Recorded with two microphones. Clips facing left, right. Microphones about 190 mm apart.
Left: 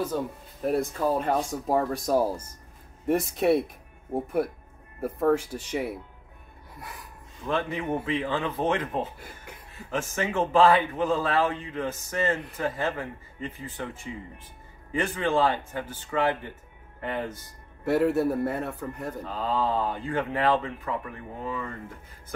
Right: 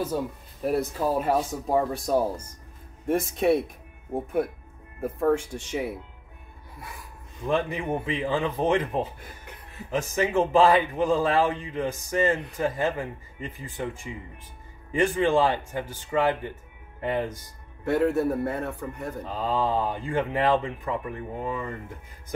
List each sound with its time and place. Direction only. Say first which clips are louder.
0.1 s speech: right 1 dB; 5° right (ahead or behind)
7.4 s speech: right 2 dB; 15° right (ahead or behind)
9.8 s speech: right 3 dB; 10° right (ahead or behind)
17.8 s speech: even; 5° left (ahead or behind)
19.2 s speech: right 1 dB; 15° right (ahead or behind)